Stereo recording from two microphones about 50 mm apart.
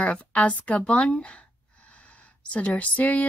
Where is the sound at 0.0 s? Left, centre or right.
Left.